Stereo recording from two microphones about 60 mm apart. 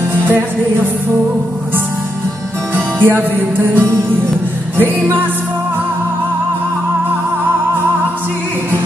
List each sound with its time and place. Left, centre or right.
0.1 s music: right
2.7 s music: right